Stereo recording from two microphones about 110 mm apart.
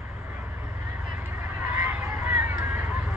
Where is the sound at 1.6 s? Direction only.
25° right (ahead or behind).